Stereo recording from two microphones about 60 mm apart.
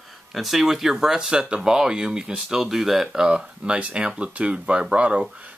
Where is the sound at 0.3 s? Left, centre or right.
Centre.